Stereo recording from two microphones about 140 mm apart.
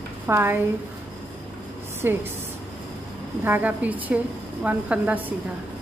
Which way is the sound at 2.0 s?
15° right (ahead or behind).